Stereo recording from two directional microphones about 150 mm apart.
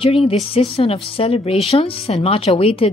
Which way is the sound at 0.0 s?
40° left (ahead or behind).